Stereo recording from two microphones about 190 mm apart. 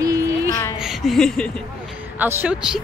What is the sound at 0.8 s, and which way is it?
Speech, centre (ahead or behind).